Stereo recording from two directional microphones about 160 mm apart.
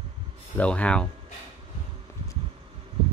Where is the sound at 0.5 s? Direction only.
10° left (ahead or behind).